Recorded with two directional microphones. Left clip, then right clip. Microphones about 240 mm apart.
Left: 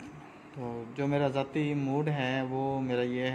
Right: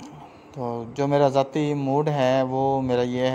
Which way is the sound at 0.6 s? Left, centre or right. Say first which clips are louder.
Right 9 dB; right.